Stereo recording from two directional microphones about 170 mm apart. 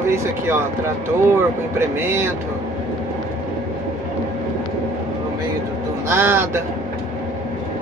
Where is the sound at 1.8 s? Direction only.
15° right (ahead or behind).